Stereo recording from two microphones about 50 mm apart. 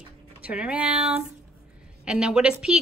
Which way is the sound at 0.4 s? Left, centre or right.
Right.